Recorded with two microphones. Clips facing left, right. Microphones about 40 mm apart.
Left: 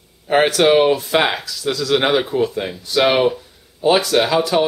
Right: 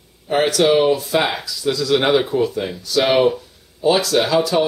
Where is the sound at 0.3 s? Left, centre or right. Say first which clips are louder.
Left 2 dB; left.